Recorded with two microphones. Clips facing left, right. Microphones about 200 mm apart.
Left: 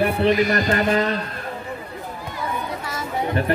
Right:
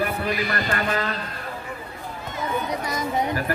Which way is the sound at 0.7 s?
20° left (ahead or behind).